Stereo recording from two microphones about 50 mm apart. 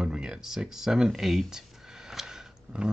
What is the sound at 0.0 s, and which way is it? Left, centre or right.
Speech, centre.